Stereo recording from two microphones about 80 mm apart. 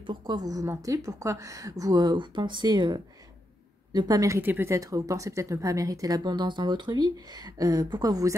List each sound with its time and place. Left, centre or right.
0.0 s a woman's voice: right
0.4 s a woman's voice: right
4.4 s speech: right
4.7 s speech: right